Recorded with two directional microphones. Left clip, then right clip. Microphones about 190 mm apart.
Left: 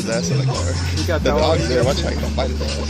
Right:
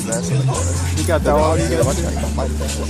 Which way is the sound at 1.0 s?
45° right (ahead or behind).